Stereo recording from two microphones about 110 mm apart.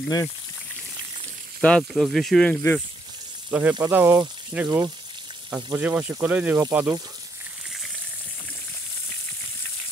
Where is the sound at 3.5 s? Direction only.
15° right (ahead or behind).